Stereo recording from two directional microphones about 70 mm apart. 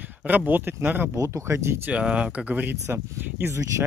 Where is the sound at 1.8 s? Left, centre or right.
Centre.